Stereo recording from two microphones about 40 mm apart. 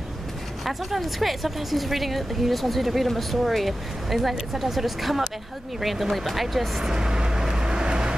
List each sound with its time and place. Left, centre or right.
0.7 s a woman's voice: centre
6.8 s vehicle: centre